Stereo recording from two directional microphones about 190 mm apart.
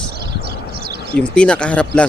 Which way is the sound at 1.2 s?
5° left (ahead or behind).